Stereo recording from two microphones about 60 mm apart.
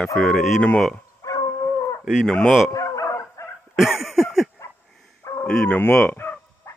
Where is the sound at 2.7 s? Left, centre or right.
Left.